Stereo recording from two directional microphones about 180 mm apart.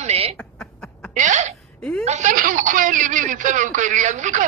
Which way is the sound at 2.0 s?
40° right (ahead or behind).